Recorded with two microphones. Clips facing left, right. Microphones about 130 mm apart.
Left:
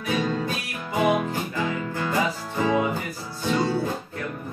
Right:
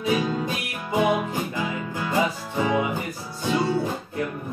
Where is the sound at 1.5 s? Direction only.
15° right (ahead or behind).